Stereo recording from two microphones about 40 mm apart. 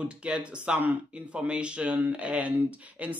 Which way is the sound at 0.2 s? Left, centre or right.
Right.